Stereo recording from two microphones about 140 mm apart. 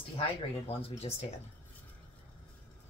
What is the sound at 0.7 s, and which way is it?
Speech, 45° left (ahead or behind).